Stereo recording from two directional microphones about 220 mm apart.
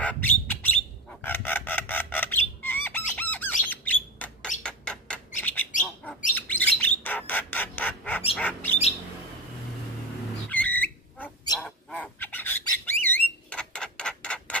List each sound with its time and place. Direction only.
0.0 s bird: 5° left (ahead or behind)
5.7 s bird: 35° left (ahead or behind)
6.3 s bird: 10° left (ahead or behind)
10.5 s a sound: 10° left (ahead or behind)
11.6 s squawk: 5° left (ahead or behind)